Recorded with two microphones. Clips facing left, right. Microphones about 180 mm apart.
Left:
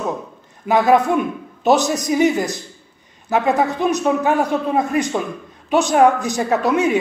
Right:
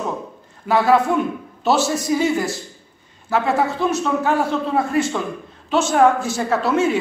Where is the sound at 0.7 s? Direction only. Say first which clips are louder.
Left 2 dB; 20° left (ahead or behind).